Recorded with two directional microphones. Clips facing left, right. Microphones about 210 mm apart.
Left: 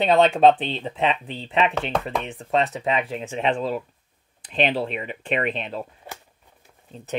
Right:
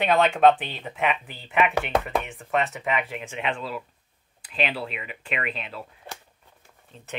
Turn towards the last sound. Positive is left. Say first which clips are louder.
# left 7 dB
turn(degrees=35)  # may be behind; listen again after turning